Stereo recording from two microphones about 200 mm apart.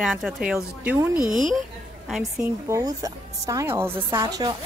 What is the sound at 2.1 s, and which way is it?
Speech, centre (ahead or behind).